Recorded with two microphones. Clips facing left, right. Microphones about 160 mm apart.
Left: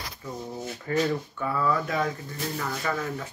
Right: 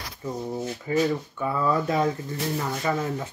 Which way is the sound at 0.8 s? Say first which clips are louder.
Right 2 dB; 10° right (ahead or behind).